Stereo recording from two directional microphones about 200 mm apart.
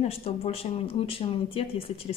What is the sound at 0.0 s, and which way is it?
A woman's voice, 30° left (ahead or behind).